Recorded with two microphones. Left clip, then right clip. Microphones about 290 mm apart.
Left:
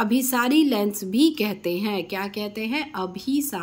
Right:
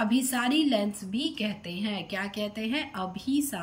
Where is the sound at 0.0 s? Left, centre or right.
Centre.